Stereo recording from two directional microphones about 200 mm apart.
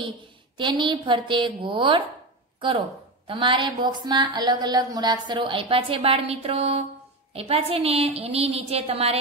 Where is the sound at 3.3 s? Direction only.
25° right (ahead or behind).